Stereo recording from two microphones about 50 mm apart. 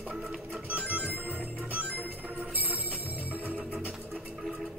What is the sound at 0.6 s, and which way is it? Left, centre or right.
Music, right.